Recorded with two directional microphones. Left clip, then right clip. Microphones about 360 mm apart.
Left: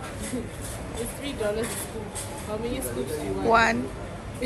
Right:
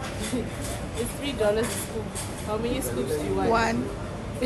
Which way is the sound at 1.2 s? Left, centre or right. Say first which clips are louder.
Right 4 dB; centre.